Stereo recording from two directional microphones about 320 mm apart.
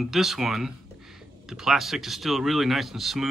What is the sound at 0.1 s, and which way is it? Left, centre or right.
Speech, centre.